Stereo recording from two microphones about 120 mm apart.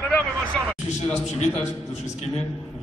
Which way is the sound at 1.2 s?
65° left (ahead or behind).